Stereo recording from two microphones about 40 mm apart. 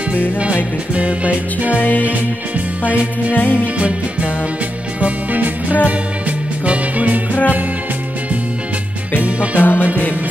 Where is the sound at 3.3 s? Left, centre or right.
Left.